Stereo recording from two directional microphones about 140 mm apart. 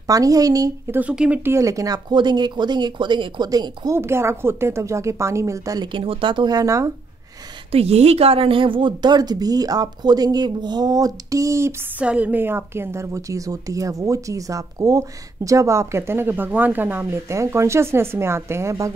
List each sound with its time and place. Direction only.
0.0 s a woman's voice: 25° right (ahead or behind)
0.9 s a woman's voice: 10° right (ahead or behind); by 6.9 s 25° right (ahead or behind)
7.7 s a woman's voice: 45° right (ahead or behind); by 11.7 s 20° right (ahead or behind)
12.0 s a woman's voice: 10° right (ahead or behind)